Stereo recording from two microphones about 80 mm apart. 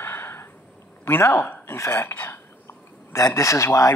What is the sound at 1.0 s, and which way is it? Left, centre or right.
Speech, left.